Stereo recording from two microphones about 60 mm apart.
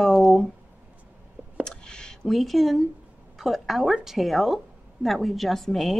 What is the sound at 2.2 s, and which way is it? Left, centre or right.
A woman's voice, centre.